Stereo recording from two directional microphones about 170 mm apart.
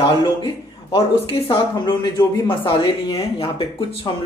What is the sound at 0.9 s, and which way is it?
Speech, 30° left (ahead or behind).